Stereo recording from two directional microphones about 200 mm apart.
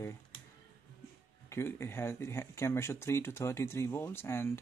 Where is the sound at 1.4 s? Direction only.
10° left (ahead or behind).